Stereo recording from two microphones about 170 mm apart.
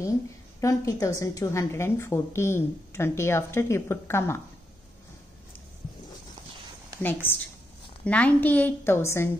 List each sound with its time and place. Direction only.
0.6 s a woman's voice: 20° left (ahead or behind)
7.0 s a woman's voice: 10° left (ahead or behind)